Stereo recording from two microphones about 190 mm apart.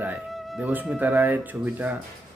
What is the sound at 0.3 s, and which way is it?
A man's voice, centre (ahead or behind).